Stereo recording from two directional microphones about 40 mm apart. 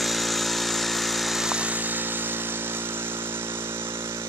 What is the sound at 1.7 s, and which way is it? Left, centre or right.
Vehicle, right.